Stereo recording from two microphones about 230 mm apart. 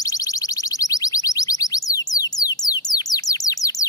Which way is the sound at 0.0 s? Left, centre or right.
Centre.